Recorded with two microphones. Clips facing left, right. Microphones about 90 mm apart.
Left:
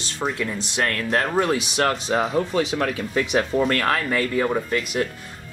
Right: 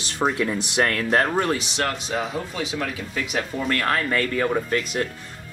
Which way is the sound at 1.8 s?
35° left (ahead or behind).